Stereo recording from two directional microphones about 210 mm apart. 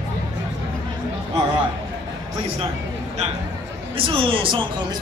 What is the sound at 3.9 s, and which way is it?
Speech, 25° right (ahead or behind).